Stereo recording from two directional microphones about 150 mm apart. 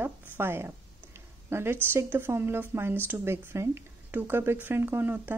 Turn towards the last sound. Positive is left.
turn(degrees=-10)  # may be behind; listen again after turning